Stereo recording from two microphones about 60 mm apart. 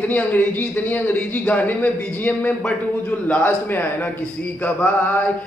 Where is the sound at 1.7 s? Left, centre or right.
Left.